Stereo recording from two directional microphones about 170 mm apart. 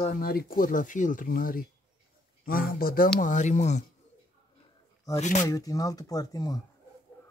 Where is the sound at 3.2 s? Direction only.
45° left (ahead or behind).